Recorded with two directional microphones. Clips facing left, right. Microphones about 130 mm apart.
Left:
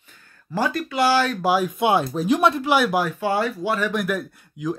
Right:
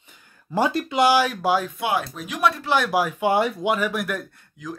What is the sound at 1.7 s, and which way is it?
Speech, 25° left (ahead or behind).